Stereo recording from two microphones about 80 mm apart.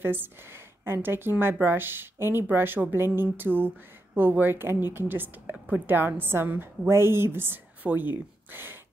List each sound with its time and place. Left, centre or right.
0.0 s speech: right